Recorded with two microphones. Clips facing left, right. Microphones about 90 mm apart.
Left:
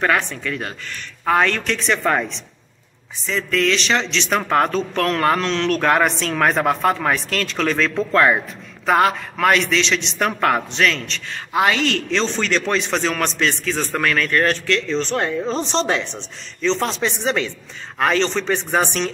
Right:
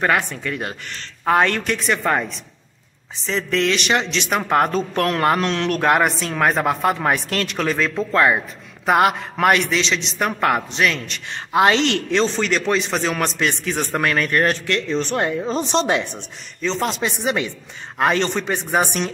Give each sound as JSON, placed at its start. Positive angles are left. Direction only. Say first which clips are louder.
{"t": 0.0, "sound": "a man's voice", "louder": "even", "side_deg": -15}
{"t": 1.8, "sound": "a man's voice", "louder": "left 2 dB", "side_deg": -5}
{"t": 3.3, "sound": "a man's voice", "louder": "even", "side_deg": -25}
{"t": 7.0, "sound": "a woman's voice", "louder": "even", "side_deg": -20}
{"t": 11.5, "sound": "a man's voice", "louder": "right 2 dB", "side_deg": -25}
{"t": 12.3, "sound": "a man's voice", "louder": "right 1 dB", "side_deg": -5}
{"t": 13.5, "sound": "a man's voice", "louder": "even", "side_deg": -20}